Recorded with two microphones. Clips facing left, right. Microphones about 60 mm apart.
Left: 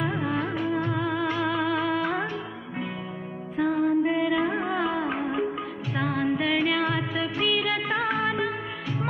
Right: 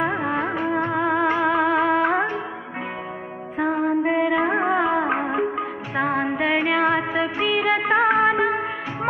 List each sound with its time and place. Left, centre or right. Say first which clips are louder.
0.0 s music: right 4 dB; right
3.5 s music: right 2 dB; right